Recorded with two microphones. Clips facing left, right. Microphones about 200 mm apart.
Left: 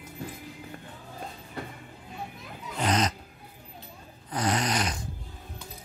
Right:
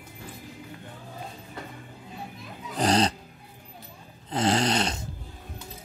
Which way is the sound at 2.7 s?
35° right (ahead or behind).